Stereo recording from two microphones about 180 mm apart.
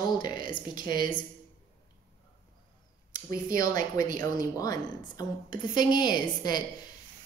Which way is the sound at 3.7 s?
50° right (ahead or behind).